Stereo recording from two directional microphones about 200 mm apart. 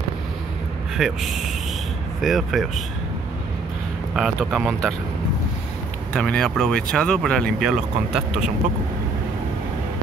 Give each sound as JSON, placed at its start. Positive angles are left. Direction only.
{"t": 0.9, "sound": "speech", "side_deg": 0}
{"t": 4.1, "sound": "speech", "side_deg": -5}
{"t": 6.1, "sound": "speech", "side_deg": 5}